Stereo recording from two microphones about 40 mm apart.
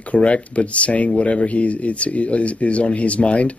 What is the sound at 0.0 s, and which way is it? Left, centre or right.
Speech, left.